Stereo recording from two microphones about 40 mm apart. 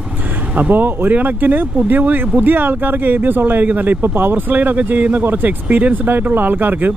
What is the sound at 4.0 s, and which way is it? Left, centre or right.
Speech, right.